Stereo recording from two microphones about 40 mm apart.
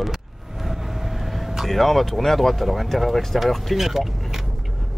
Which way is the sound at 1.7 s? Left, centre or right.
Centre.